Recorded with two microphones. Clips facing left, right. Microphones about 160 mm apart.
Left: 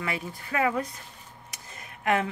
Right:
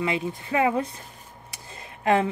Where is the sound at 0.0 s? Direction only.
20° right (ahead or behind).